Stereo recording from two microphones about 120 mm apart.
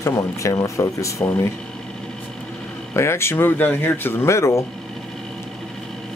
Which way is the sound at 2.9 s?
20° left (ahead or behind).